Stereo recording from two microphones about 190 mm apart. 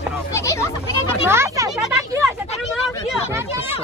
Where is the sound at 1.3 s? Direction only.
15° right (ahead or behind).